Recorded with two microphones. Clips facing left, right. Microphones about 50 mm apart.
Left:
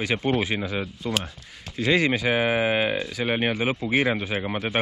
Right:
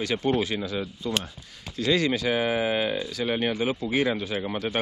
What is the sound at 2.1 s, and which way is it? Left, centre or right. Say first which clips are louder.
Speech: left 2 dB; left.